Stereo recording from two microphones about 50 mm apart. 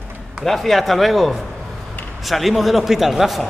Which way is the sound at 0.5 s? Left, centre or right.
Centre.